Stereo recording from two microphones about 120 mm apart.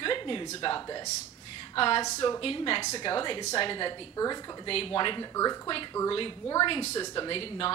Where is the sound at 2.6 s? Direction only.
45° left (ahead or behind).